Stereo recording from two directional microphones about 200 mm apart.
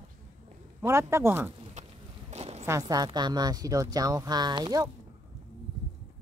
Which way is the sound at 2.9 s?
20° right (ahead or behind).